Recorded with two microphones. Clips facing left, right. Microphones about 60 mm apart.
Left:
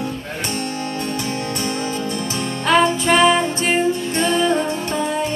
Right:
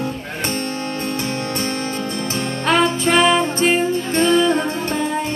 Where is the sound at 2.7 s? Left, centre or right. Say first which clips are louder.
Left 1 dB; right.